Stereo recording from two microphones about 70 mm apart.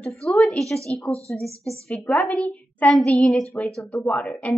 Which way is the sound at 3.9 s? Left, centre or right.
Left.